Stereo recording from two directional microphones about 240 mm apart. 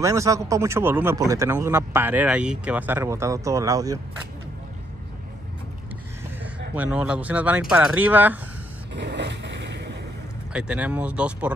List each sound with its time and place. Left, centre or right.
0.0 s speech: centre
6.7 s speech: centre
8.9 s vehicle: right
10.5 s speech: centre